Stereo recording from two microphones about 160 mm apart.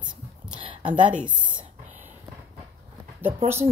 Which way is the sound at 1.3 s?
30° right (ahead or behind).